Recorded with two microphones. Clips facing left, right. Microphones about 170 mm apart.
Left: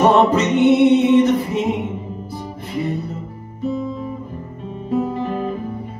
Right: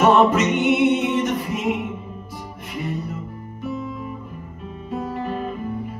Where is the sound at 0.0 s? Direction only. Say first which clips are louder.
Left 2 dB; 30° left (ahead or behind).